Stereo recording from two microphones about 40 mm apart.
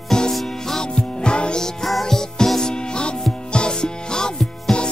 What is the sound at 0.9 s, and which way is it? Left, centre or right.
Music, left.